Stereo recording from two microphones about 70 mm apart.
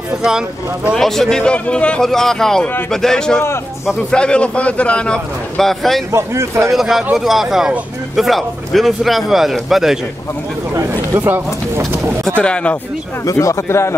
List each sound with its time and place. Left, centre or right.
0.9 s a man's voice: centre
2.0 s a man's voice: centre
5.6 s a man's voice: centre
6.1 s speech: right
6.7 s a man's voice: centre
11.1 s speech: right
12.4 s a man's voice: centre
13.2 s speech: left